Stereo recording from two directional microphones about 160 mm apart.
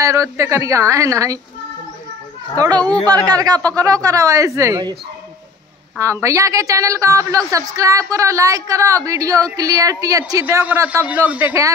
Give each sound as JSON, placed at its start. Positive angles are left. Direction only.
{"t": 0.0, "sound": "a woman's voice", "side_deg": -20}
{"t": 2.6, "sound": "a woman's voice", "side_deg": -25}
{"t": 5.9, "sound": "a woman's voice", "side_deg": -20}
{"t": 10.4, "sound": "a man's voice", "side_deg": -10}